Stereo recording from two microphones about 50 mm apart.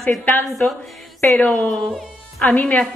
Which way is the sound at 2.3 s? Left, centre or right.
Left.